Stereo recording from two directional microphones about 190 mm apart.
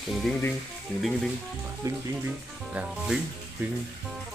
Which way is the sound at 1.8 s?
15° right (ahead or behind).